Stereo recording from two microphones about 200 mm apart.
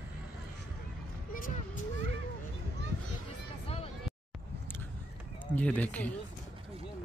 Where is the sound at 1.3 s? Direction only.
45° left (ahead or behind).